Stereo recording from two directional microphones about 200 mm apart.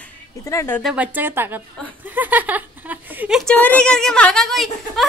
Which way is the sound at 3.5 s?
5° left (ahead or behind).